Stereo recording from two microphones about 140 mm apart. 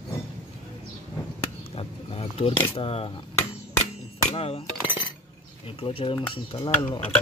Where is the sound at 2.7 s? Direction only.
45° left (ahead or behind).